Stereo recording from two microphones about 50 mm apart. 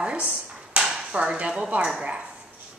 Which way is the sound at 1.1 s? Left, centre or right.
Right.